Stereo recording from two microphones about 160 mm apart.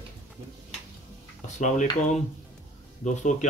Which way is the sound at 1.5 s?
50° left (ahead or behind).